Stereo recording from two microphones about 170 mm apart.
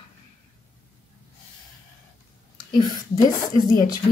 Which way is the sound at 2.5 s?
25° left (ahead or behind).